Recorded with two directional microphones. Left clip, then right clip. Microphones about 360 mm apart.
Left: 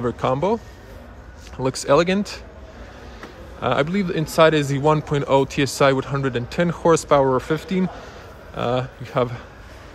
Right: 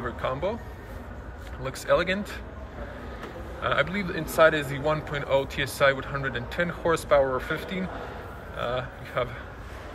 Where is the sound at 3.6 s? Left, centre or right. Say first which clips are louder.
Left 5 dB; centre.